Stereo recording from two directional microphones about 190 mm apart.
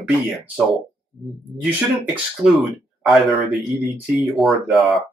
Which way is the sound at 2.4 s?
5° right (ahead or behind).